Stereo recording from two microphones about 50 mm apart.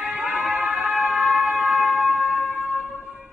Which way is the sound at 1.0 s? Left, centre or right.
Centre.